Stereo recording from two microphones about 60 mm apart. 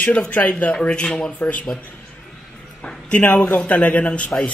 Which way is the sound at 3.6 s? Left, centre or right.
Left.